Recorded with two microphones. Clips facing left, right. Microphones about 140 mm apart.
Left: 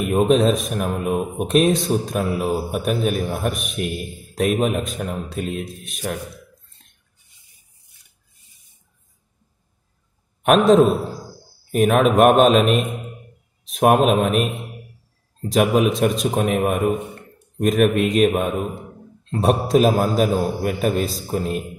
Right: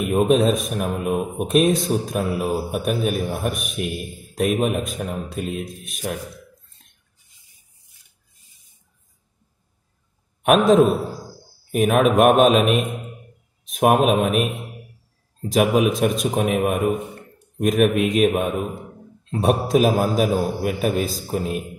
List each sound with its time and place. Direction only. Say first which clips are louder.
0.0 s a man's voice: left 1 dB; 5° right (ahead or behind)
10.4 s a man's voice: left 1 dB; 5° right (ahead or behind)